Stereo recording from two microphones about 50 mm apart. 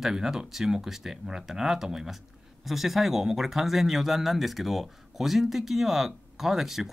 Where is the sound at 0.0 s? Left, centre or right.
Centre.